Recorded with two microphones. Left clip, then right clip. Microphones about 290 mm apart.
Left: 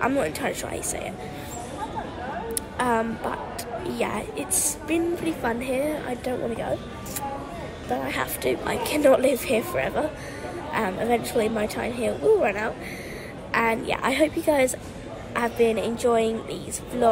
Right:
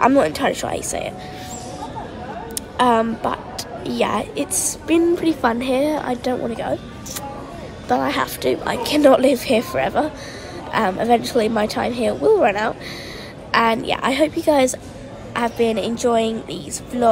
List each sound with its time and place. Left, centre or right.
0.0 s a woman's voice: centre
2.8 s a woman's voice: centre
7.9 s a woman's voice: centre